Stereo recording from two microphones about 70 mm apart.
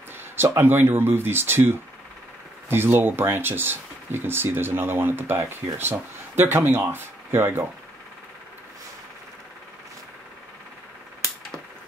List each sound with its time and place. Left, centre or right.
0.4 s speech: right